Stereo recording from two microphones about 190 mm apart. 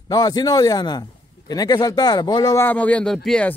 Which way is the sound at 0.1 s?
20° left (ahead or behind).